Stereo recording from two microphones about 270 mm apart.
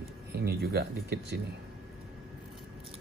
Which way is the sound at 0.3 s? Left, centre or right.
Right.